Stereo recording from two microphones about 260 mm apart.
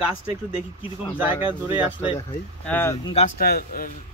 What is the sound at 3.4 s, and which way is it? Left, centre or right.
Speech, left.